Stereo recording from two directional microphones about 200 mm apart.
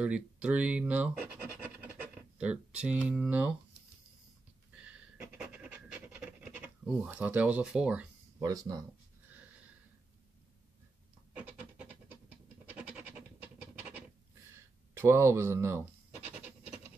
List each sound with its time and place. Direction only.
0.0 s speech: 5° right (ahead or behind)
4.7 s pant: 5° right (ahead or behind)
8.4 s speech: 20° right (ahead or behind)
11.3 s a sound: 5° right (ahead or behind)